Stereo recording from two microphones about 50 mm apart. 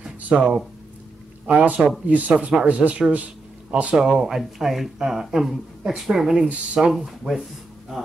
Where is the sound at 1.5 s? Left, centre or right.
Right.